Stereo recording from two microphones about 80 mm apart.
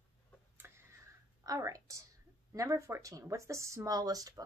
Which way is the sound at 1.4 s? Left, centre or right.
Right.